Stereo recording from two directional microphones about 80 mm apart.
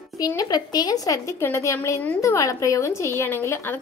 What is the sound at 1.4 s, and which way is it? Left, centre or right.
A woman's voice, left.